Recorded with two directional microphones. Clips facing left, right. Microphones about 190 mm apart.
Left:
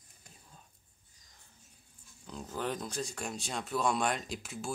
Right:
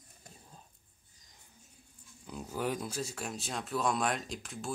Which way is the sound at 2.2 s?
5° right (ahead or behind).